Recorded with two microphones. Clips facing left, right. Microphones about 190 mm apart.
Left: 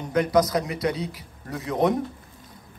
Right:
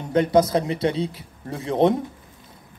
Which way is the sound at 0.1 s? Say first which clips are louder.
Right 3 dB; 30° right (ahead or behind).